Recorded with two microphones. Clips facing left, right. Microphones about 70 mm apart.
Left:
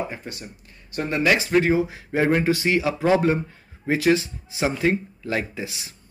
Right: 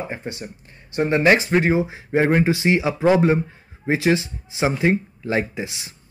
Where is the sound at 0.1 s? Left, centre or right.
Right.